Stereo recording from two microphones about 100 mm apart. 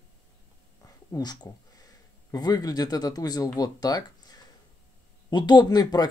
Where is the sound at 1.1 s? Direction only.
45° left (ahead or behind).